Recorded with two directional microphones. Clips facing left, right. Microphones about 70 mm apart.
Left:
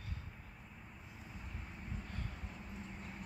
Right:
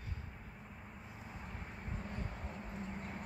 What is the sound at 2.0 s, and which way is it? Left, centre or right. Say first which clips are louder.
Vehicle: right 4 dB; right.